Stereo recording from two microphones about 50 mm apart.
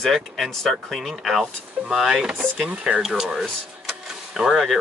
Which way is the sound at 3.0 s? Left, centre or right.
Centre.